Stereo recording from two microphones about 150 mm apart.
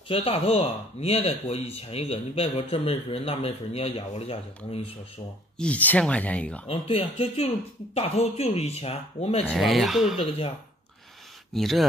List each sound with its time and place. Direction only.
0.1 s speech: 40° left (ahead or behind)
5.6 s speech: 10° left (ahead or behind)
6.7 s speech: 40° left (ahead or behind)
9.5 s speech: centre (ahead or behind)
11.5 s speech: centre (ahead or behind)